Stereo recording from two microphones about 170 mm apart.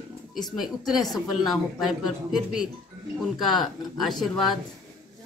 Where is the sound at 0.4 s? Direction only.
Centre (ahead or behind).